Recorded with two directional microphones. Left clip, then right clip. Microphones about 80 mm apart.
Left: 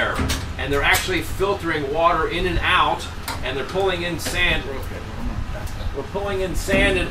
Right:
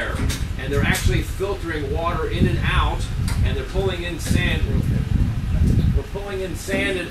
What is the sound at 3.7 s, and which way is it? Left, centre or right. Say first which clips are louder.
Speech: left 3 dB; left.